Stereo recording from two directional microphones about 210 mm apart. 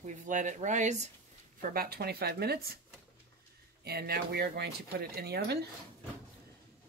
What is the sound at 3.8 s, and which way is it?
Speech, 50° right (ahead or behind).